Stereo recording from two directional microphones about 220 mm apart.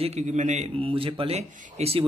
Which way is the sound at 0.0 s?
30° right (ahead or behind).